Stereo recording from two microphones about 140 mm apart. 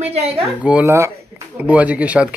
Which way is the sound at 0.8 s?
20° right (ahead or behind).